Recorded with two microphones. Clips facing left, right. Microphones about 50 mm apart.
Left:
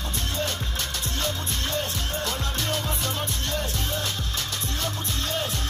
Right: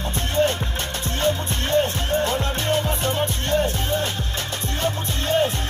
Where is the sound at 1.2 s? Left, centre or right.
Right.